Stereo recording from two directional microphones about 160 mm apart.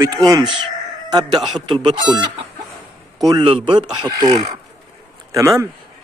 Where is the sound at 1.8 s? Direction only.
30° right (ahead or behind).